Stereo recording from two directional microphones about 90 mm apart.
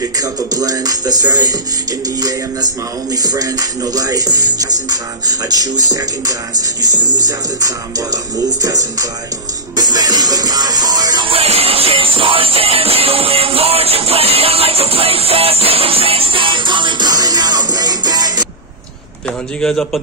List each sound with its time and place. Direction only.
0.0 s music: 45° right (ahead or behind)
11.2 s music: 90° right; by 17.1 s 60° right (ahead or behind)
17.1 s music: 45° right (ahead or behind)
19.6 s a man's voice: 5° left (ahead or behind)